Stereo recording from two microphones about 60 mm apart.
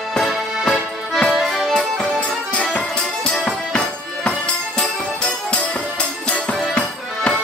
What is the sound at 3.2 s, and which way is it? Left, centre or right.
Music, centre.